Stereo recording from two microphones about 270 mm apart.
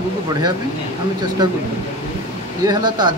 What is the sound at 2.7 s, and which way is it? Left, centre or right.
Speech, centre.